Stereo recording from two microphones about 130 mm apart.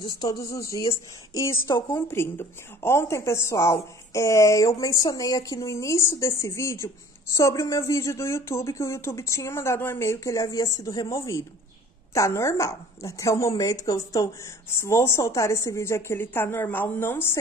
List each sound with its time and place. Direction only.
0.0 s a woman's voice: 30° left (ahead or behind)